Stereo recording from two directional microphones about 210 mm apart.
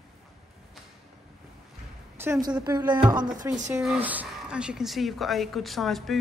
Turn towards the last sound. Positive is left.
turn(degrees=0)  # may be behind; listen again after turning